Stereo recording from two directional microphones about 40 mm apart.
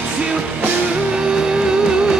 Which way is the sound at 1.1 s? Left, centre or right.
Centre.